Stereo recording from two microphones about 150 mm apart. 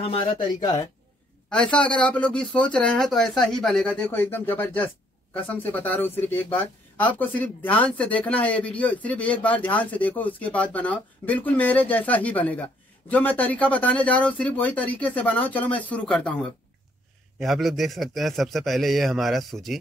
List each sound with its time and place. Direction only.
0.0 s speech: 35° left (ahead or behind)
1.5 s a man's voice: 5° left (ahead or behind)